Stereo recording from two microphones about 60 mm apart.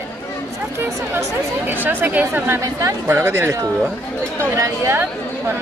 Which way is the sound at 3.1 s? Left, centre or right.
Right.